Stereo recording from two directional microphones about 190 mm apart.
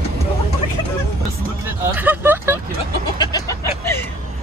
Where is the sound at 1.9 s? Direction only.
10° right (ahead or behind).